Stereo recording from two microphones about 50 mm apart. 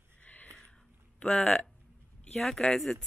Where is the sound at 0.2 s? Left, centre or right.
Left.